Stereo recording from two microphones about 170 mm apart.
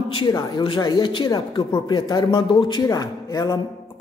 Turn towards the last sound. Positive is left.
turn(degrees=20)  # may be behind; listen again after turning